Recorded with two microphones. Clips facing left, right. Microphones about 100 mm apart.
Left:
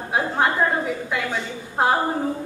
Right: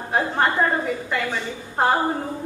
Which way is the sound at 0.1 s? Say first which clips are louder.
Even; 5° left (ahead or behind).